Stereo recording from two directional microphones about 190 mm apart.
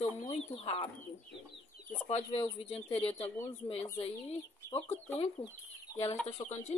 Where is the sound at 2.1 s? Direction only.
30° left (ahead or behind).